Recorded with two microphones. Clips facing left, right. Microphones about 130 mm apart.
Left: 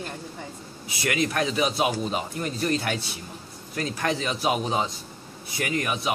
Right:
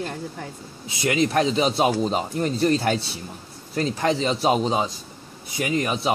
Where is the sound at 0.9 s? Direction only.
25° right (ahead or behind).